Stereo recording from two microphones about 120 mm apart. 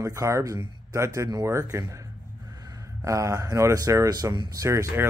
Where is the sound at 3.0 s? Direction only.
25° right (ahead or behind).